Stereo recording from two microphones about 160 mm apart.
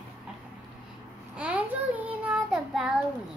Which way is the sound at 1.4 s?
10° right (ahead or behind).